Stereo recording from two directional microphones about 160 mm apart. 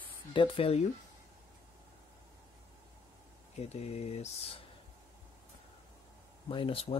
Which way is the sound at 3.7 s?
40° left (ahead or behind).